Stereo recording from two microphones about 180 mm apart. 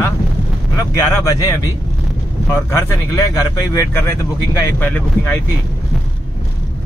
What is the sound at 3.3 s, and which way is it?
Speech, 20° left (ahead or behind).